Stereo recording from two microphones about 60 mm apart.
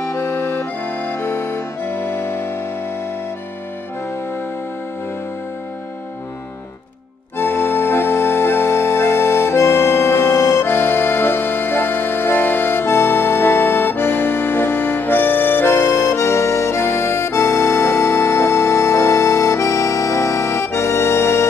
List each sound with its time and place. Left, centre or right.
1.1 s music: left
7.3 s organ: left
10.6 s music: left